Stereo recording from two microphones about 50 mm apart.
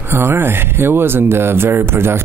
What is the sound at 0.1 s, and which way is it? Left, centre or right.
Speech, right.